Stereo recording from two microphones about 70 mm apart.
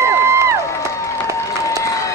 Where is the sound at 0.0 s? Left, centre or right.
Right.